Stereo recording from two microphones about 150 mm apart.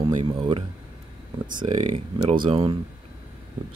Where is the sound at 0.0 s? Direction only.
35° right (ahead or behind).